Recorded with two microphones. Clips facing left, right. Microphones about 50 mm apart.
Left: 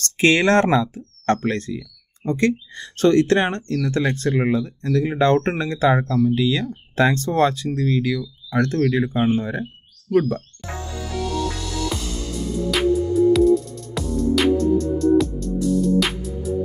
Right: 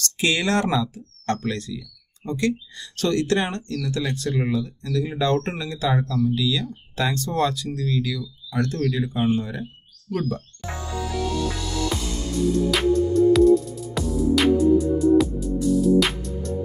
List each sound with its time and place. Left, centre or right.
0.0 s speech: left
11.1 s music: centre
12.7 s music: centre
14.6 s music: centre